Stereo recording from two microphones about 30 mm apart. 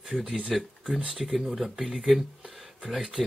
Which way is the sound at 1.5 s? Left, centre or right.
Centre.